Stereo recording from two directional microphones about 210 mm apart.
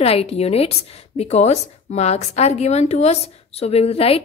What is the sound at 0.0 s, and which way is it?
A woman's voice, 30° left (ahead or behind).